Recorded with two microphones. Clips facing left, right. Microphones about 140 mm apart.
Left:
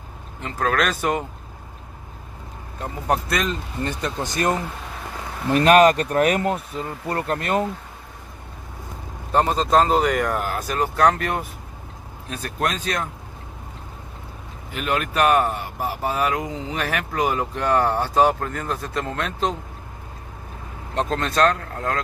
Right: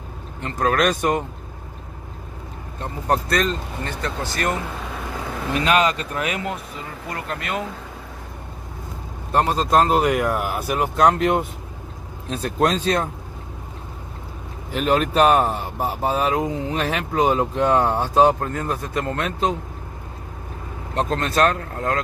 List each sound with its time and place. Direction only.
0.4 s speech: centre (ahead or behind)
2.8 s speech: 5° left (ahead or behind)
4.0 s speech: 20° left (ahead or behind)
5.5 s speech: 45° left (ahead or behind)
9.3 s speech: centre (ahead or behind); by 13.1 s 30° right (ahead or behind)
14.7 s speech: 35° right (ahead or behind); by 19.5 s 5° right (ahead or behind)
20.9 s speech: centre (ahead or behind)